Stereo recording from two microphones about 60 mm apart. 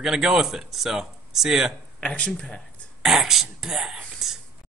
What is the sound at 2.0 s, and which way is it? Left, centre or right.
Speech, centre.